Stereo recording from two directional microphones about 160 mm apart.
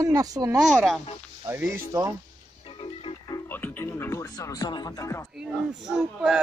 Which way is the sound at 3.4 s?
10° left (ahead or behind).